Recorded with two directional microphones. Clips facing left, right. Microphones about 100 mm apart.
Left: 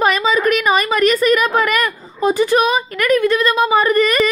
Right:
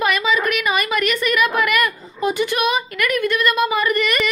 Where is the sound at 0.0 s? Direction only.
35° left (ahead or behind).